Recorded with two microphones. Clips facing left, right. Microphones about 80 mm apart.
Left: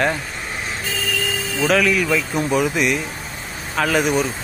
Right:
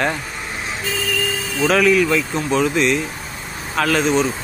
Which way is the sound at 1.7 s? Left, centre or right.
Centre.